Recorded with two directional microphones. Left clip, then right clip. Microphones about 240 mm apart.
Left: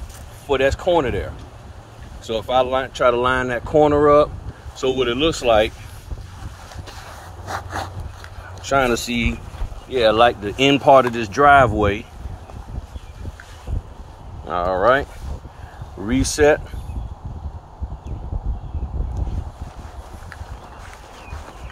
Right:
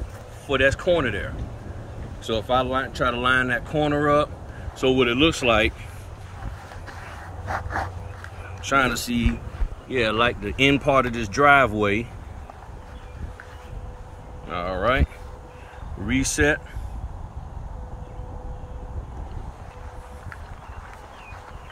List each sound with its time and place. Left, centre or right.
0.5 s speech: centre
7.4 s a sound: left
8.6 s speech: centre
9.8 s speech: centre
14.5 s speech: centre
16.4 s speech: left